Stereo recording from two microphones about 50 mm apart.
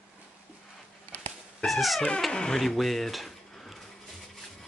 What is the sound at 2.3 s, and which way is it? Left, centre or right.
Speech, centre.